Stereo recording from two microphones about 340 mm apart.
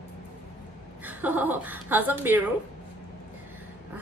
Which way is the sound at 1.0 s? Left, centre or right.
Centre.